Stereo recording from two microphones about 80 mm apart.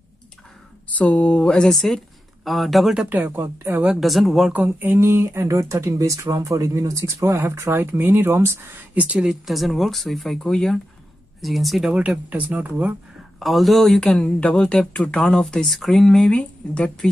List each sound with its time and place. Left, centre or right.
1.0 s speech: centre
3.1 s speech: right
3.8 s speech: centre
4.5 s speech: right
4.9 s speech: right
8.9 s speech: centre
9.3 s speech: centre
12.3 s speech: centre
13.4 s speech: centre
16.3 s speech: centre